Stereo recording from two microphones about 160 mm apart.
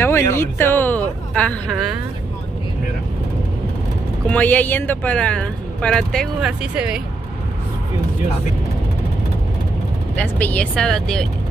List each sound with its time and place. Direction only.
0.0 s speech: 15° left (ahead or behind)
4.3 s speech: 10° left (ahead or behind); by 7.0 s 5° right (ahead or behind)
10.1 s speech: 10° left (ahead or behind)